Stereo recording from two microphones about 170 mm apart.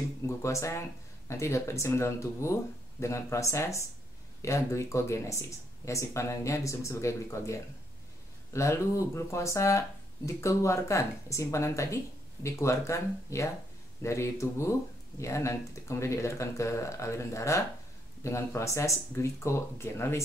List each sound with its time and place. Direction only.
0.4 s speech: 15° left (ahead or behind)